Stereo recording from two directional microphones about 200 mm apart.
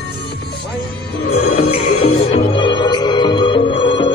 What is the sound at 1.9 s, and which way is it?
Music, 30° left (ahead or behind).